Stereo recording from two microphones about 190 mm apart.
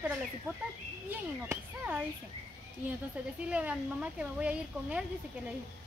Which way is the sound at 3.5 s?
5° right (ahead or behind).